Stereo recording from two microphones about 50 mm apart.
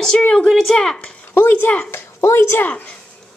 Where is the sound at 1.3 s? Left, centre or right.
Left.